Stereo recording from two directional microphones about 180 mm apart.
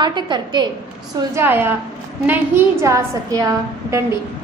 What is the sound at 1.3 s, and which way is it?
A woman's voice, 10° right (ahead or behind).